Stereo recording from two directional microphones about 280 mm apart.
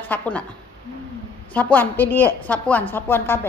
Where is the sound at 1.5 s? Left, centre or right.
Centre.